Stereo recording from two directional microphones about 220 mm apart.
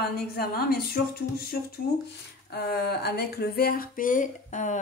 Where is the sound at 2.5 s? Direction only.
45° left (ahead or behind).